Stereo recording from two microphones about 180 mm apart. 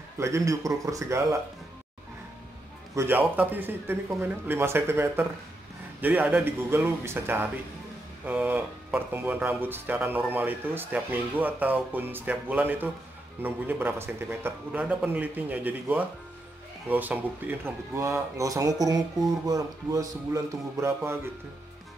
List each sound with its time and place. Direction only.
0.2 s speech: 15° right (ahead or behind)
3.0 s speech: 10° right (ahead or behind)